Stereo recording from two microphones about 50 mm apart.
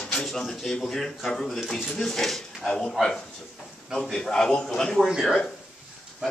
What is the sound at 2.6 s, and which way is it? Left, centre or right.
Speech, centre.